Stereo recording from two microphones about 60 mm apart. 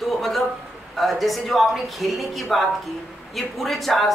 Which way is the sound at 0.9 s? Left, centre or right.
Centre.